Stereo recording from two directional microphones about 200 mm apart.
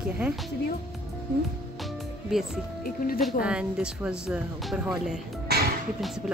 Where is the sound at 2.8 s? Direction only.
45° left (ahead or behind).